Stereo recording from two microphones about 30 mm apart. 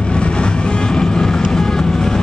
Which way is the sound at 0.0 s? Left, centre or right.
Left.